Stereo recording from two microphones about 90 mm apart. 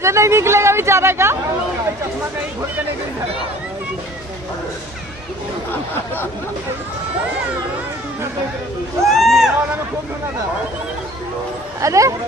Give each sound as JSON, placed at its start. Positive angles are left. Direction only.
{"t": 0.0, "sound": "speech", "side_deg": -30}
{"t": 9.0, "sound": "a sound", "side_deg": 0}
{"t": 11.8, "sound": "speech", "side_deg": -35}